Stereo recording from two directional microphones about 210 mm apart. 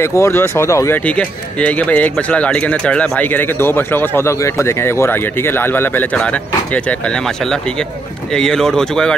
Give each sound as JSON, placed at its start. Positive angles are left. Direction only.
{"t": 0.0, "sound": "speech", "side_deg": 15}
{"t": 8.3, "sound": "speech", "side_deg": 5}